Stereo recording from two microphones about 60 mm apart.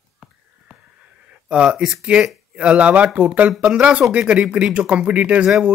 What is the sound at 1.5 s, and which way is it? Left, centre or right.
Speech, centre.